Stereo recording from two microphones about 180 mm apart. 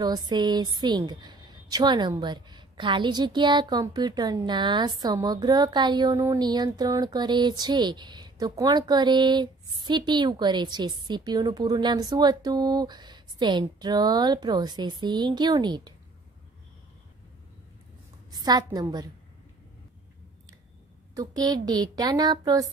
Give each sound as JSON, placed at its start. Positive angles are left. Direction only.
{"t": 0.0, "sound": "a woman's voice", "side_deg": -25}
{"t": 18.3, "sound": "a woman's voice", "side_deg": -20}
{"t": 21.1, "sound": "a woman's voice", "side_deg": -20}